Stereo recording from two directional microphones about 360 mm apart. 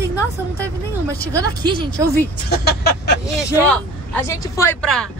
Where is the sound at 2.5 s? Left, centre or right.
Left.